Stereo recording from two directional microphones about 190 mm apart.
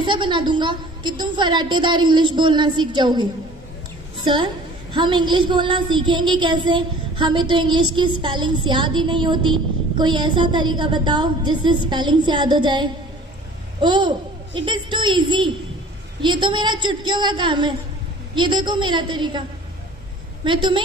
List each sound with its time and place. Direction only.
0.0 s child singing: 25° right (ahead or behind)
4.2 s a woman's voice: 25° right (ahead or behind)
4.9 s child singing: 25° right (ahead or behind)
20.4 s child singing: 25° right (ahead or behind)